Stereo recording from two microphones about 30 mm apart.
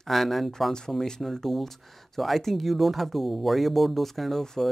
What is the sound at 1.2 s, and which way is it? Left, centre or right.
Speech, centre.